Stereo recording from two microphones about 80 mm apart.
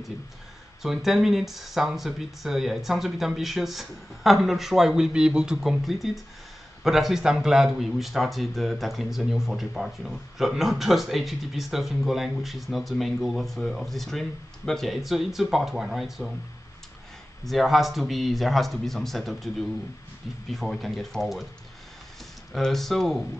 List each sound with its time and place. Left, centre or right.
0.8 s speech: centre
17.5 s speech: centre
22.5 s speech: centre